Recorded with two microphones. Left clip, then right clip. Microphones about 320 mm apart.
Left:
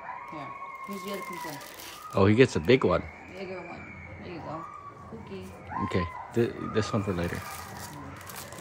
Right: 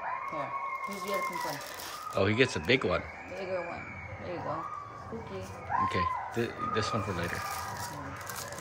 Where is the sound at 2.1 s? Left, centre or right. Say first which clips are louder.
Left 5 dB; left.